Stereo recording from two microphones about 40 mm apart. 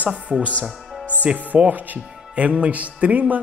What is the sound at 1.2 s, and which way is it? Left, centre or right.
Speech, right.